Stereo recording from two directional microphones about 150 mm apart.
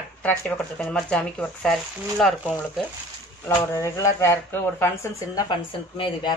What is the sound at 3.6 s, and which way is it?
Speech, 20° left (ahead or behind).